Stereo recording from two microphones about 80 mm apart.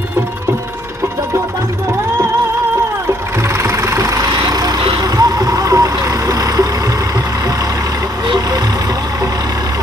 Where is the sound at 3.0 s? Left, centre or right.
Right.